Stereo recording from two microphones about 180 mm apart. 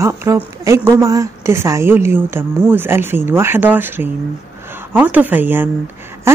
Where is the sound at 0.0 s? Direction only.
15° right (ahead or behind).